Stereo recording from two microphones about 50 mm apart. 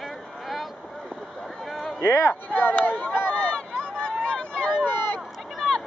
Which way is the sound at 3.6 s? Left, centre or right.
Centre.